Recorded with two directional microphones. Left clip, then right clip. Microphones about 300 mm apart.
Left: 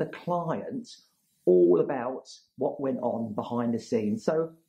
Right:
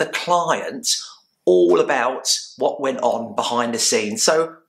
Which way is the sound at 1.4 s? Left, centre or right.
Right.